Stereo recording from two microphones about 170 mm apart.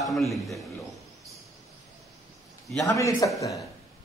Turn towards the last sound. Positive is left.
turn(degrees=20)  # may be behind; listen again after turning